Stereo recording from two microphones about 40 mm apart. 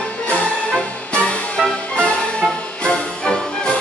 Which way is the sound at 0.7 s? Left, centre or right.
Left.